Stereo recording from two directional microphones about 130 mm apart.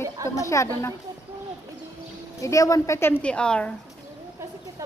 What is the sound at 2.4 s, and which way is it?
Speech, 25° left (ahead or behind).